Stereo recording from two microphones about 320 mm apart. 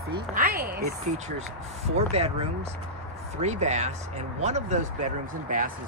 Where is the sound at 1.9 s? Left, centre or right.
Centre.